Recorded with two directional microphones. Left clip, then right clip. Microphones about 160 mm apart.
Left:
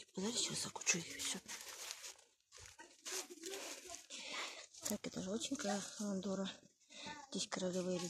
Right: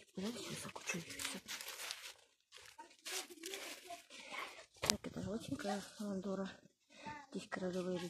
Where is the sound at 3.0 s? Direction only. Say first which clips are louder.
Right 1 dB; 20° left (ahead or behind).